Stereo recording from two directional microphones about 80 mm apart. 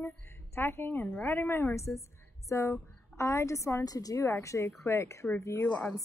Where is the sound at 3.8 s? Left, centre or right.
Left.